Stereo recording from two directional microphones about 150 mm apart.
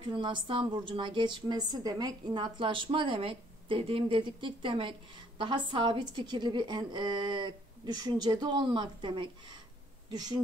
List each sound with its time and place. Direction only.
0.0 s a woman's voice: 30° right (ahead or behind)